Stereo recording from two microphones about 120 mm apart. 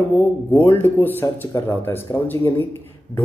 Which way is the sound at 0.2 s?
15° left (ahead or behind).